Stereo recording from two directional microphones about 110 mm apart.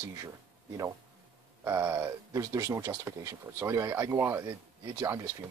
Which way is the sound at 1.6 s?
25° right (ahead or behind).